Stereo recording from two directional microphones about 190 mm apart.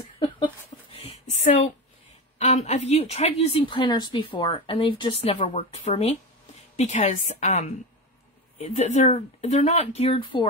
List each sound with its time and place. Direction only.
2.3 s a woman's voice: 35° left (ahead or behind)